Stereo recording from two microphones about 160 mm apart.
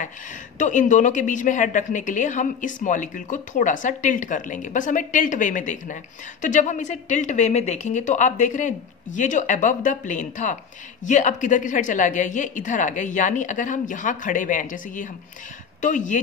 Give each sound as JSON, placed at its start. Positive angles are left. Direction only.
{"t": 0.6, "sound": "a woman's voice", "side_deg": 50}